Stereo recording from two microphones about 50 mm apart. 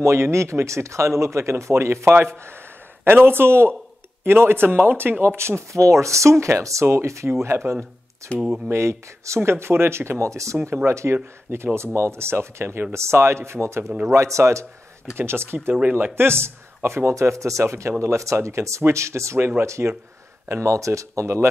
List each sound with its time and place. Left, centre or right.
0.0 s speech: right
3.1 s speech: right
7.4 s speech: right
8.4 s speech: right
8.6 s speech: right
9.4 s speech: right
10.2 s speech: right
10.9 s speech: right
12.9 s speech: right
15.1 s speech: right